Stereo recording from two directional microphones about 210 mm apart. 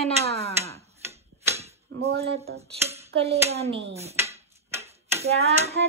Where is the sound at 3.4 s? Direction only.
30° right (ahead or behind).